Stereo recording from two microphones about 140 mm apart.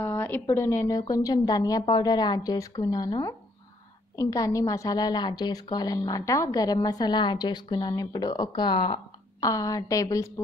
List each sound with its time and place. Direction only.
0.0 s a woman's voice: 15° left (ahead or behind); by 9.0 s 35° left (ahead or behind)
9.4 s a woman's voice: 25° left (ahead or behind)